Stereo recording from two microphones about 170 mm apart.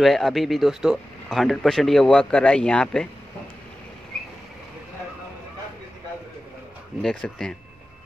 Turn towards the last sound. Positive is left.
turn(degrees=5)  # may be behind; listen again after turning